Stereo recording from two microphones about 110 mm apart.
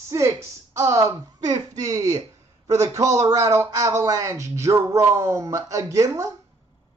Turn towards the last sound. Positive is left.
turn(degrees=-30)  # may be behind; listen again after turning